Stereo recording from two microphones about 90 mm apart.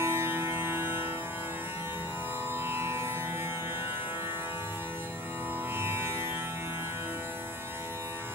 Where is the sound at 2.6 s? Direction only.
25° right (ahead or behind).